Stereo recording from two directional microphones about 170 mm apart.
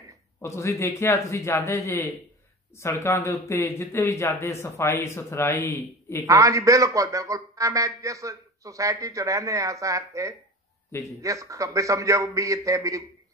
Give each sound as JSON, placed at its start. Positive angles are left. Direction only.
{"t": 0.4, "sound": "speech", "side_deg": 15}
{"t": 6.2, "sound": "a man's voice", "side_deg": -20}